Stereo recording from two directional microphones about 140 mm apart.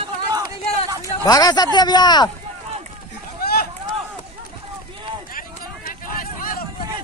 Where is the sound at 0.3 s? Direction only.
25° right (ahead or behind).